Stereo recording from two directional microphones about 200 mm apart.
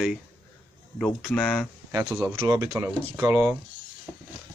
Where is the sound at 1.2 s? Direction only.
5° left (ahead or behind).